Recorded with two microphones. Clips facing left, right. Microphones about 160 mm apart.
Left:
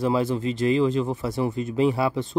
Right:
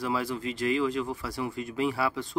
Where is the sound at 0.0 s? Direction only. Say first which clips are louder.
Left 7 dB; 25° left (ahead or behind).